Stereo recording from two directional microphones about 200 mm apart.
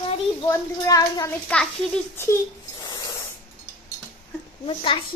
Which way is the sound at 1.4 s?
5° left (ahead or behind).